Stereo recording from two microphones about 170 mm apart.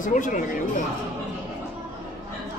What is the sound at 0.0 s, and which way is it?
Speech, 50° left (ahead or behind).